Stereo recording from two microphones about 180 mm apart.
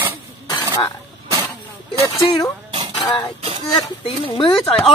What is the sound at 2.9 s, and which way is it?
Music, 20° left (ahead or behind).